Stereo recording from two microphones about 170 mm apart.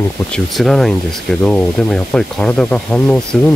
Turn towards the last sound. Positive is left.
turn(degrees=0)  # may be behind; listen again after turning